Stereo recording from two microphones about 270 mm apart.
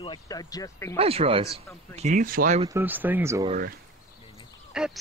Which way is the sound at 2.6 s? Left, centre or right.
Centre.